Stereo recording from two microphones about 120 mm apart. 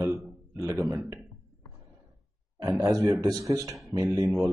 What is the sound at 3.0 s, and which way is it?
Speech, 20° right (ahead or behind).